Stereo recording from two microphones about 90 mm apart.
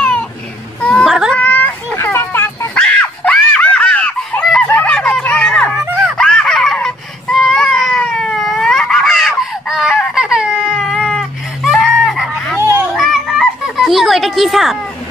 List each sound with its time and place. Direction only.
0.7 s baby cry: 15° left (ahead or behind)
1.0 s cat: 5° right (ahead or behind)
1.3 s dog: 15° left (ahead or behind)
2.8 s screaming: 10° left (ahead or behind)
4.7 s a sound: 10° left (ahead or behind)
6.1 s baby cry: 5° left (ahead or behind)
10.8 s cat: centre (ahead or behind)
11.7 s fowl: 5° right (ahead or behind)
12.9 s children playing: centre (ahead or behind)